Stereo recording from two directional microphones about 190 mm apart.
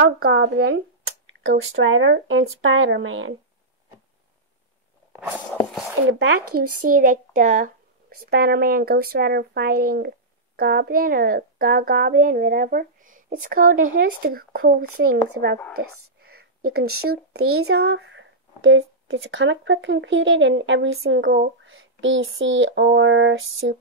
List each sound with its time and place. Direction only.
0.0 s speech: 55° right (ahead or behind); by 3.3 s 90° right
6.9 s speech: 45° right (ahead or behind)
8.3 s speech: 55° right (ahead or behind)
15.8 s speech: 75° right (ahead or behind); by 17.4 s 55° right (ahead or behind)
17.6 s speech: 90° right; by 21.4 s 70° right (ahead or behind)
21.6 s speech: 85° right